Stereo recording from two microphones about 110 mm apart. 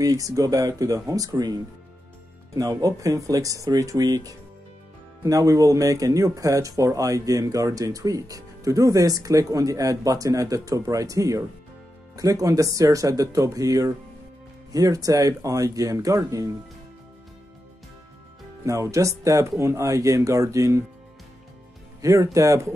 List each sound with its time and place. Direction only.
0.0 s speech: 30° right (ahead or behind)
18.6 s speech: 30° right (ahead or behind)
22.0 s speech: 30° right (ahead or behind)